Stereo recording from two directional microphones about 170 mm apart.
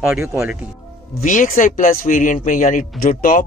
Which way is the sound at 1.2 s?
50° left (ahead or behind).